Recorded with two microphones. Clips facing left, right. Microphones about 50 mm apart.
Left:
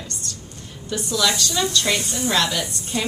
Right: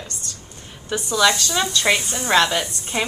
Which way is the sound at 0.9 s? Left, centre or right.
Centre.